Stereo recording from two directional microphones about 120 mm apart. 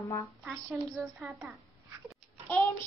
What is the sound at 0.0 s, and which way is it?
Speech, 25° left (ahead or behind).